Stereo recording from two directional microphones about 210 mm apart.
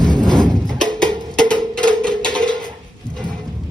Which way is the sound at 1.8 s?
5° left (ahead or behind).